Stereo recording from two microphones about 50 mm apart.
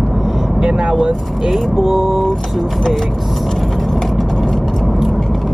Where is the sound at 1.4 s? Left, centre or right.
Centre.